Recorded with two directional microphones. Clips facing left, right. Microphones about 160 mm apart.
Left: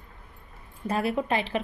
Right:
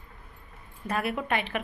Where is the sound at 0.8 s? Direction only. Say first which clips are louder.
Left 3 dB; 30° left (ahead or behind).